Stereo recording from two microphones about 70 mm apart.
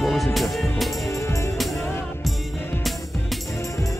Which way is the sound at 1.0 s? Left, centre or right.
Left.